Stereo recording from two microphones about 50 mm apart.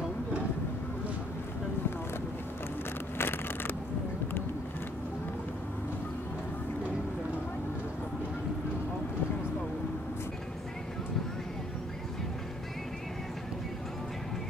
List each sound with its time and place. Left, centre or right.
3.2 s vehicle: left